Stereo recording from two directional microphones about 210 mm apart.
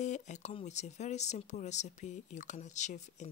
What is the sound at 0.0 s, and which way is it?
Speech, 35° left (ahead or behind).